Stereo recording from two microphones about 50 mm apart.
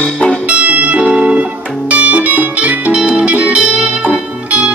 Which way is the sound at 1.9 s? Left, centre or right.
Right.